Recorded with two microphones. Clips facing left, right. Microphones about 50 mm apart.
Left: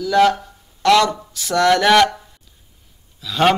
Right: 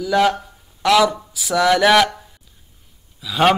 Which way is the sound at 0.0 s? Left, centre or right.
Centre.